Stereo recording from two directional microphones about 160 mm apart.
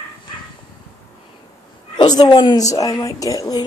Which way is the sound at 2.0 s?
25° left (ahead or behind).